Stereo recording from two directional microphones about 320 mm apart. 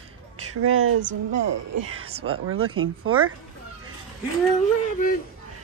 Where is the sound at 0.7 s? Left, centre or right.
Right.